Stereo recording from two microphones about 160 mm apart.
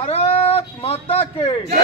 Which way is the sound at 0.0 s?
40° left (ahead or behind).